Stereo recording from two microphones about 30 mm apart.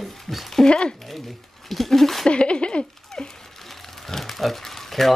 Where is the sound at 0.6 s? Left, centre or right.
Left.